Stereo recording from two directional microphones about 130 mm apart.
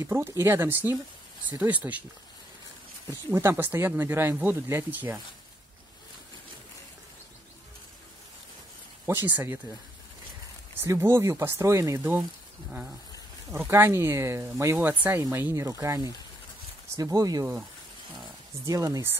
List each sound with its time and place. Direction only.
0.0 s speech: 20° right (ahead or behind)
3.1 s speech: 15° right (ahead or behind)
9.0 s speech: 15° right (ahead or behind)
10.8 s speech: 20° right (ahead or behind)
13.5 s speech: 20° right (ahead or behind)
18.7 s speech: 25° right (ahead or behind)